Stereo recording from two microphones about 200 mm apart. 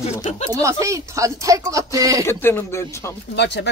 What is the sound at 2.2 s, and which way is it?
Speech, 10° left (ahead or behind).